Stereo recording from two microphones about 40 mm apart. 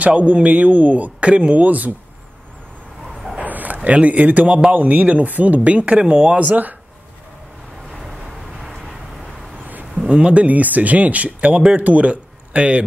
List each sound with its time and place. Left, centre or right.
0.0 s speech: right
1.6 s speech: right
3.1 s vehicle: centre
3.3 s a sound: right
4.7 s speech: right
6.5 s speech: right
8.0 s vehicle: centre
9.6 s a sound: right
9.9 s speech: right